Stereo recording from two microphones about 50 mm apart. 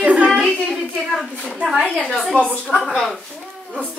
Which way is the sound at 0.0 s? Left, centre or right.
Right.